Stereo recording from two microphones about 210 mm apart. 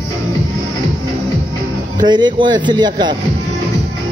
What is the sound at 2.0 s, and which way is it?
Speech, 20° right (ahead or behind).